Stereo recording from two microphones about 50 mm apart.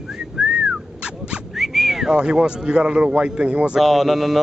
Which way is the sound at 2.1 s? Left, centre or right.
Centre.